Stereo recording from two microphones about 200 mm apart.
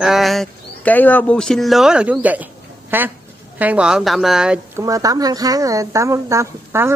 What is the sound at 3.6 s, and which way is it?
Speech, 5° right (ahead or behind).